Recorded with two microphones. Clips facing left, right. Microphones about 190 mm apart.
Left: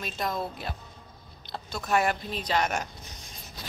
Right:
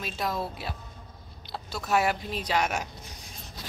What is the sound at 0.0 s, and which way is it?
A woman's voice, 5° right (ahead or behind).